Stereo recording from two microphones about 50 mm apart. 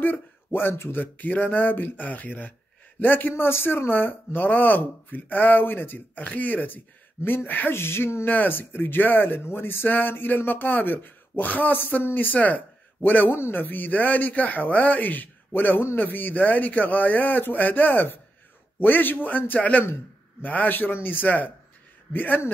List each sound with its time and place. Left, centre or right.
0.0 s speech: left
7.7 s speech: left
8.3 s speech: left